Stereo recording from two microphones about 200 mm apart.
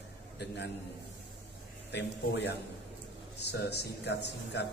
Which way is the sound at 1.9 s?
60° left (ahead or behind).